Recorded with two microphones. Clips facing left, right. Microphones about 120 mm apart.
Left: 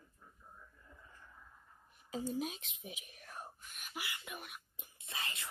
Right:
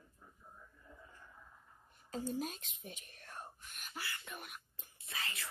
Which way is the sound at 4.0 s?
15° left (ahead or behind).